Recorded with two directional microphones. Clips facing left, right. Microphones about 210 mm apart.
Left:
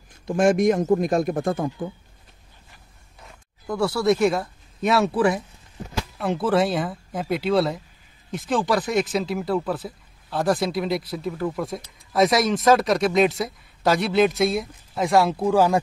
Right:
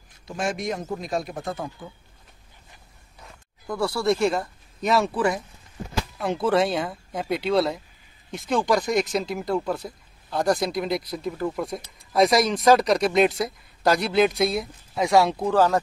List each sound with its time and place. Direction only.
0.4 s speech: 50° left (ahead or behind)
3.6 s speech: centre (ahead or behind)